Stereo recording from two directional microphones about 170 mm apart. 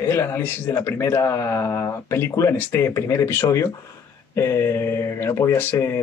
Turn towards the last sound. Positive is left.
turn(degrees=15)  # may be behind; listen again after turning